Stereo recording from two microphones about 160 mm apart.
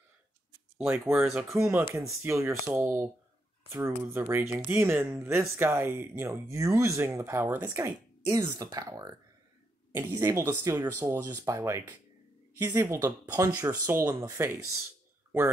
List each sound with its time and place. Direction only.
0.7 s speech: 10° right (ahead or behind)